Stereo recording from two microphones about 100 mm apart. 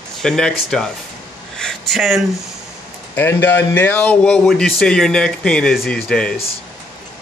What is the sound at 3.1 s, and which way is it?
Speech, 20° left (ahead or behind).